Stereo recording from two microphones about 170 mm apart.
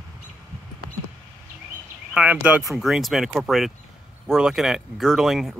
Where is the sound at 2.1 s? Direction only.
5° right (ahead or behind).